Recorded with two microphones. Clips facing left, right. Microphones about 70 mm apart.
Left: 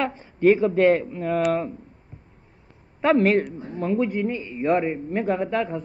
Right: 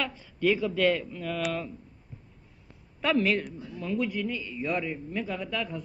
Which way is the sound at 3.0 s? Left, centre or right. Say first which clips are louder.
Left 7 dB; left.